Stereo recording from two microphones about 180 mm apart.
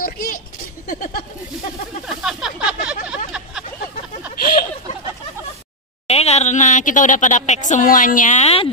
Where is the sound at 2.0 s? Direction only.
Centre (ahead or behind).